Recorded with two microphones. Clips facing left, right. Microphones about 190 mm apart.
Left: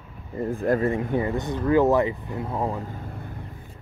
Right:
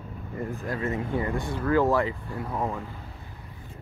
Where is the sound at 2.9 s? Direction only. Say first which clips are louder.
Left 7 dB; 55° left (ahead or behind).